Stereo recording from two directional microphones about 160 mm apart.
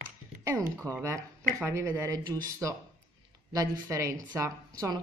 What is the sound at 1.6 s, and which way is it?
A woman's voice, 15° right (ahead or behind).